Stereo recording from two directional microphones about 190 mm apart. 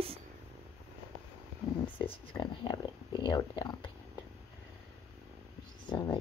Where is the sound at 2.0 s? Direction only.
25° left (ahead or behind).